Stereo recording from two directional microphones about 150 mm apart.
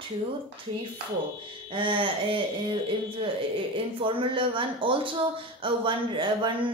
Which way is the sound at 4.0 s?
35° right (ahead or behind).